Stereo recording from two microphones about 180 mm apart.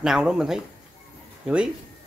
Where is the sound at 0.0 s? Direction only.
5° right (ahead or behind).